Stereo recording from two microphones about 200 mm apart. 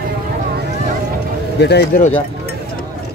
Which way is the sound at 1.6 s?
55° left (ahead or behind).